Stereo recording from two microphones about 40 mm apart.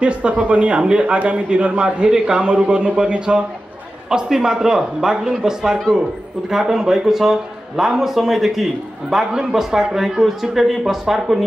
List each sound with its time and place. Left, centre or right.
0.0 s a man's voice: right
4.1 s a man's voice: centre